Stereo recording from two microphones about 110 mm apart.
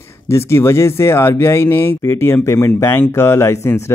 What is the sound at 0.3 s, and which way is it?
Speech, 25° left (ahead or behind).